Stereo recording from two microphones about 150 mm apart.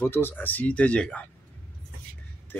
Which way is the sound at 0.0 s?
15° left (ahead or behind).